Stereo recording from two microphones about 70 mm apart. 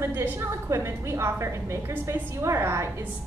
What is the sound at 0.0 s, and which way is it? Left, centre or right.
A woman's voice, right.